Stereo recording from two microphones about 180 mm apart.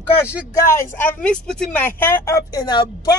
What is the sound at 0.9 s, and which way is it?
Speech, 10° left (ahead or behind).